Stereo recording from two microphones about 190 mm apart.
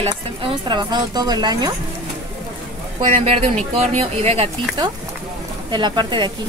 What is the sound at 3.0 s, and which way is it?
Speech, 30° right (ahead or behind).